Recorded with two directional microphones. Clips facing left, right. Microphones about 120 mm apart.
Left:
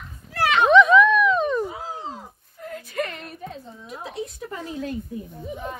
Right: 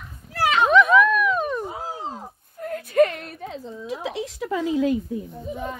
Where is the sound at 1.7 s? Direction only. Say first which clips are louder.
Right 2 dB; 40° right (ahead or behind); by 3.1 s 55° right (ahead or behind).